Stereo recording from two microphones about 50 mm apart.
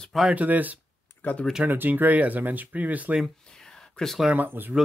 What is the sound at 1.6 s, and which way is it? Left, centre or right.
Speech, right.